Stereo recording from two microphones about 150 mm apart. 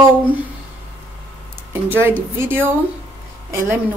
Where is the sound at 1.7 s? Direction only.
15° right (ahead or behind).